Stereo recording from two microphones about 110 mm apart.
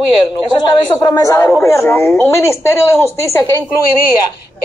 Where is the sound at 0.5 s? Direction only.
40° left (ahead or behind).